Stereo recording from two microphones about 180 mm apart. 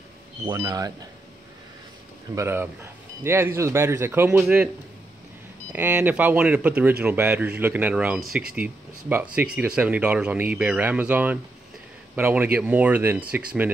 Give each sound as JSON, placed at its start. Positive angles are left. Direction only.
{"t": 0.5, "sound": "speech", "side_deg": -20}
{"t": 2.3, "sound": "speech", "side_deg": -15}
{"t": 5.7, "sound": "speech", "side_deg": -10}